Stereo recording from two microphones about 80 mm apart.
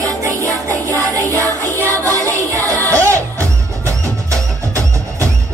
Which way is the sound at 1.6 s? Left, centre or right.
Left.